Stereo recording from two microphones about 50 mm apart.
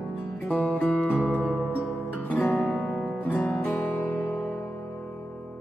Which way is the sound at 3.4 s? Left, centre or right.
Left.